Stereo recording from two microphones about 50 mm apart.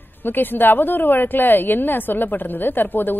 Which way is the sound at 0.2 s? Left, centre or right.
Left.